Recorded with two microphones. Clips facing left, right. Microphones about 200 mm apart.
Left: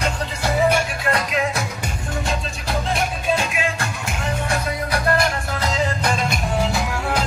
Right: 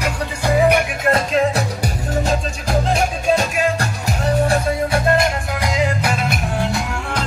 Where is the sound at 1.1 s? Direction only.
35° right (ahead or behind).